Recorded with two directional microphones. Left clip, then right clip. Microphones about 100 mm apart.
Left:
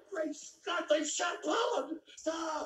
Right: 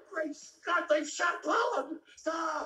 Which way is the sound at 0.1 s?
25° left (ahead or behind).